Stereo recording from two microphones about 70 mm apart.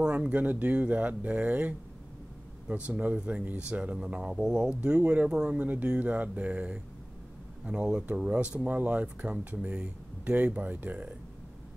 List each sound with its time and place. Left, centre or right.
0.0 s speech: centre